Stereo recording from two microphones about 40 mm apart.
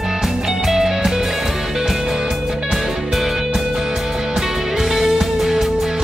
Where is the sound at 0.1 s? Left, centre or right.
Centre.